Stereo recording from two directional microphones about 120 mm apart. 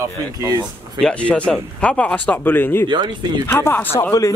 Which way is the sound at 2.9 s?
40° right (ahead or behind).